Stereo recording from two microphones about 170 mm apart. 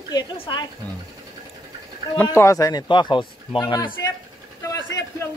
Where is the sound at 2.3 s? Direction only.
20° left (ahead or behind).